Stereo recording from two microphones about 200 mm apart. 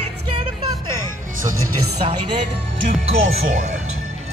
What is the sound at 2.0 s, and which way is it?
Speech, 30° right (ahead or behind).